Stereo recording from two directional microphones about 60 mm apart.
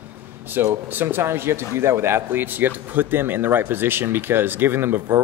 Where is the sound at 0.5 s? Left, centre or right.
Right.